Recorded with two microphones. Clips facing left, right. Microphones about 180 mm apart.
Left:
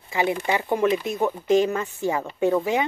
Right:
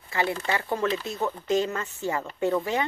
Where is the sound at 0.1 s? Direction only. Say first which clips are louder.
Left 4 dB; 15° left (ahead or behind).